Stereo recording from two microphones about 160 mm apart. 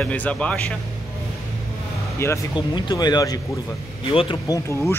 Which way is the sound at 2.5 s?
30° left (ahead or behind).